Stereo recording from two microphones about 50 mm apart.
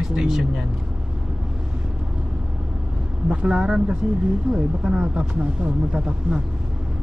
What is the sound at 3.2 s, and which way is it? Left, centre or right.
Speech, centre.